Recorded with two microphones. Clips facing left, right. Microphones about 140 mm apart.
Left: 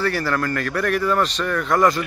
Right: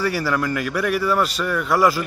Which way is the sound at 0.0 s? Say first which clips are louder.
Even; 10° right (ahead or behind).